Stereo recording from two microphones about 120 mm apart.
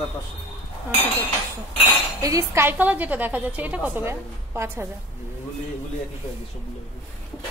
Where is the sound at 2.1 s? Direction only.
25° right (ahead or behind).